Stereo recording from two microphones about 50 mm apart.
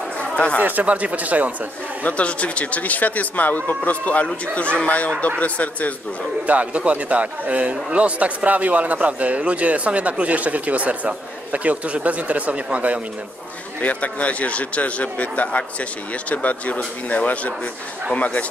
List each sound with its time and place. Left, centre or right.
0.2 s chatter: left
0.6 s speech: right
2.0 s a man's voice: left
6.4 s a man's voice: right
13.7 s a man's voice: left